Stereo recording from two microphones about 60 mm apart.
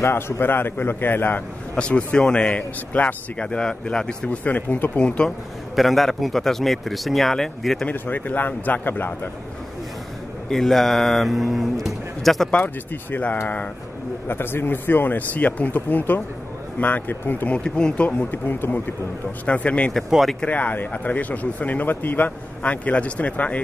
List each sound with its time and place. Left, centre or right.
0.0 s speech: left
1.8 s speech: centre
3.3 s speech: centre
4.5 s speech: left
5.0 s speech: centre
5.8 s speech: centre
7.9 s speech: left
10.5 s speech: centre
12.6 s speech: left
17.5 s speech: centre
18.3 s speech: left
19.4 s speech: left
20.1 s speech: centre
20.4 s speech: left